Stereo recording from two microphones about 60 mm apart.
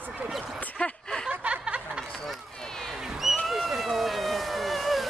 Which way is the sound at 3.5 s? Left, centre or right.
Centre.